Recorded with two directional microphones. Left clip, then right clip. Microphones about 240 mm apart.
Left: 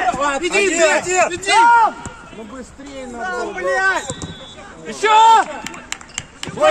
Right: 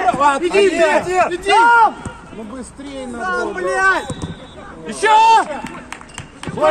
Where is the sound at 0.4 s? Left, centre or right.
Left.